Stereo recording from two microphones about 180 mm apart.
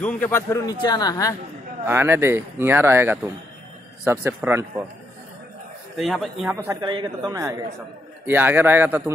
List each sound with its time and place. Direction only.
0.0 s a man's voice: 10° left (ahead or behind)
1.9 s speech: 15° right (ahead or behind)
5.9 s speech: centre (ahead or behind)
6.7 s speech: 20° right (ahead or behind)